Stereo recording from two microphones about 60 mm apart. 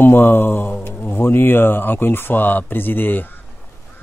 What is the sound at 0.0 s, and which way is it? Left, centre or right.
A man's voice, left.